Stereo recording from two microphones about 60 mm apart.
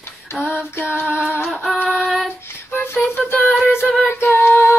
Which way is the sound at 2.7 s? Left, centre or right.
Left.